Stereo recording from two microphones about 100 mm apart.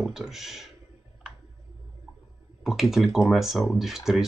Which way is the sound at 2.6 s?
Centre (ahead or behind).